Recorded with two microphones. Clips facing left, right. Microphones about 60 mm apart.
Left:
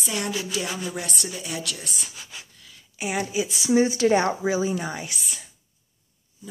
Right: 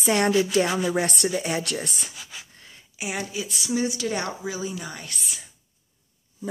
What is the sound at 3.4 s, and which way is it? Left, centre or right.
Speech, left.